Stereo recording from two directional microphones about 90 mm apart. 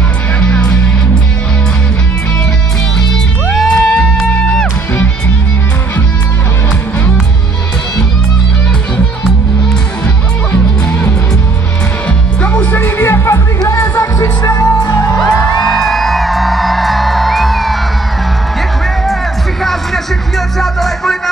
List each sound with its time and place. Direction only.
0.4 s music: 15° left (ahead or behind)
3.5 s music: 10° left (ahead or behind)
10.5 s music: 20° left (ahead or behind)
12.4 s music: 15° left (ahead or behind); by 15.0 s 35° left (ahead or behind)
15.1 s music: 5° left (ahead or behind)
19.6 s music: centre (ahead or behind)